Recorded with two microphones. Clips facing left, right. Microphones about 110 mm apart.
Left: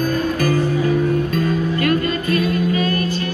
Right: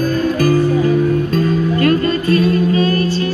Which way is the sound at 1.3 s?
35° right (ahead or behind).